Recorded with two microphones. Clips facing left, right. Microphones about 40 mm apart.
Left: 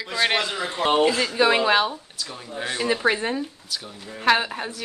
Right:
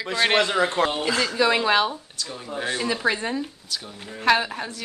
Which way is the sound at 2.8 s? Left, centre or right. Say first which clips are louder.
Left 4 dB; centre.